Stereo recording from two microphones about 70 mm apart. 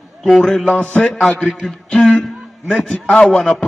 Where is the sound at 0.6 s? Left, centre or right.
Centre.